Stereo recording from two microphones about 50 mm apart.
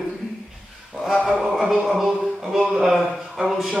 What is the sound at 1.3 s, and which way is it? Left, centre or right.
A man's voice, centre.